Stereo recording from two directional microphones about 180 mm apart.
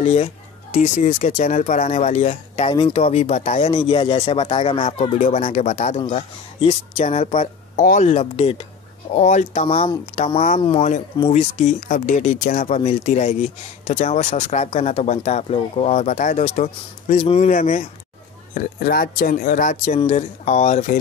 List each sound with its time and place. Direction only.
0.0 s speech: 35° left (ahead or behind)
5.9 s speech: 30° left (ahead or behind)
18.5 s speech: 55° left (ahead or behind)